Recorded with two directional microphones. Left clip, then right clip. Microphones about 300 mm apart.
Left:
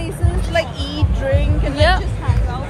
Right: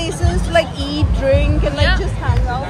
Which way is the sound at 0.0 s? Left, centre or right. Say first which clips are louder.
Right 5 dB; right.